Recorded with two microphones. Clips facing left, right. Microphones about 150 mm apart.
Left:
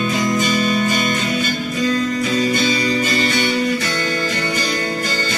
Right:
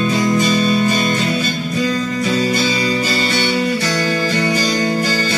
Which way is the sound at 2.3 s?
30° right (ahead or behind).